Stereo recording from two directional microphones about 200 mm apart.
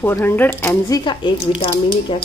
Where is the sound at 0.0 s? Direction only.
10° left (ahead or behind).